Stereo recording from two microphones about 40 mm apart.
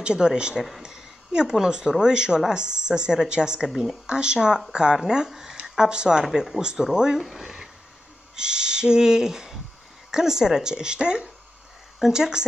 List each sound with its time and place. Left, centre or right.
0.0 s speech: centre
3.6 s speech: centre
4.1 s speech: right
5.6 s speech: right
7.2 s a sound: centre
8.4 s speech: right